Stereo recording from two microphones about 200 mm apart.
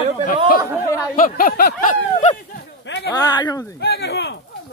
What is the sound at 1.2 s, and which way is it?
Speech, 45° left (ahead or behind).